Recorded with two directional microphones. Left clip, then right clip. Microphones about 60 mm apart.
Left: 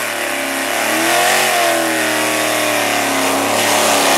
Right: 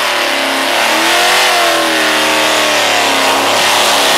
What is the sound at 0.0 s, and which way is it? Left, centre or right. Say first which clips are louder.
Vehicle: right 7 dB; centre.